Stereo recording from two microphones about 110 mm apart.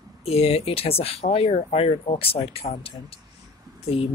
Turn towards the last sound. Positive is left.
turn(degrees=60)  # may be behind; listen again after turning